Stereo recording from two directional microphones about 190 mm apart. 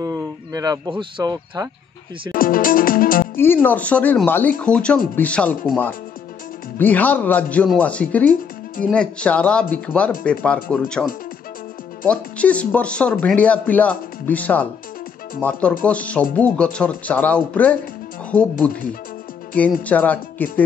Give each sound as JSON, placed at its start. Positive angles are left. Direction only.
{"t": 0.0, "sound": "speech", "side_deg": -20}
{"t": 2.3, "sound": "music", "side_deg": 50}
{"t": 3.3, "sound": "speech", "side_deg": 10}
{"t": 12.1, "sound": "speech", "side_deg": 5}
{"t": 19.8, "sound": "speech", "side_deg": 10}